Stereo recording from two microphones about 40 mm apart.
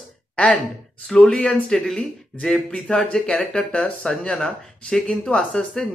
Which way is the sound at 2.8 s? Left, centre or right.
Left.